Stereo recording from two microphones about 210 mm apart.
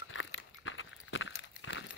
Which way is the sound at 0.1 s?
75° left (ahead or behind).